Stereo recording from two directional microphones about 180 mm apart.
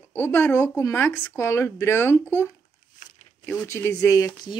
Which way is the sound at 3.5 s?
15° left (ahead or behind).